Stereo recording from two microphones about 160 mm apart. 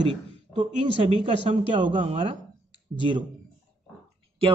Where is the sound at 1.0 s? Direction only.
35° right (ahead or behind).